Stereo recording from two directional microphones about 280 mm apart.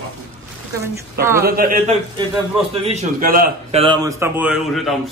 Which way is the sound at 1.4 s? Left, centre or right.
Right.